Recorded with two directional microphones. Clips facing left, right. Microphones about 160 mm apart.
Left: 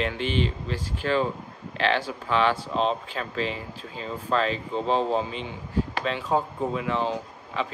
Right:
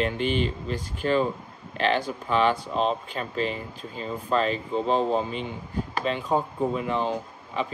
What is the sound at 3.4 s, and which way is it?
Speech, 45° right (ahead or behind).